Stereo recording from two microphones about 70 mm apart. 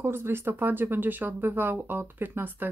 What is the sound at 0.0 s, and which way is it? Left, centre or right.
Speech, right.